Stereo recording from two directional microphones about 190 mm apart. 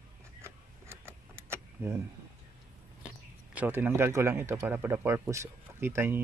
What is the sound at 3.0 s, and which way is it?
Speech, 5° right (ahead or behind).